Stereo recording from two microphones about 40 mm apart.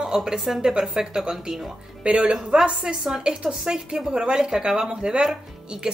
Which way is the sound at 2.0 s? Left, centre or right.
Right.